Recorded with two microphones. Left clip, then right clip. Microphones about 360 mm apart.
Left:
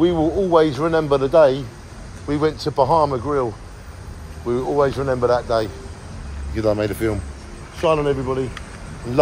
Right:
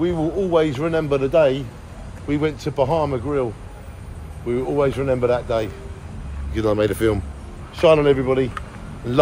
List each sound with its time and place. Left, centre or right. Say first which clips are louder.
0.0 s a man's voice: left 4 dB; left
4.5 s a man's voice: left 1 dB; centre